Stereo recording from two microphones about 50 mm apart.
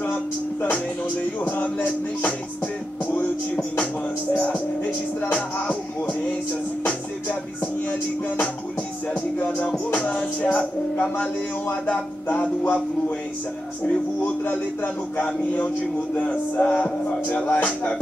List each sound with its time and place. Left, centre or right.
0.0 s music: left
1.4 s music: left
3.7 s music: left
6.8 s music: left
10.1 s music: left
15.2 s music: left